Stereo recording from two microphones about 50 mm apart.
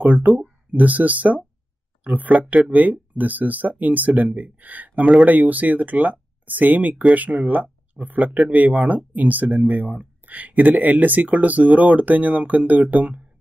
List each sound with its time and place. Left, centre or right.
0.0 s speech: right